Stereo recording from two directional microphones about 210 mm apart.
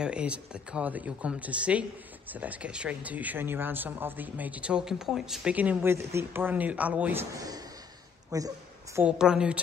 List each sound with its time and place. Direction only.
0.0 s speech: 5° right (ahead or behind)
9.0 s a woman's voice: 5° right (ahead or behind)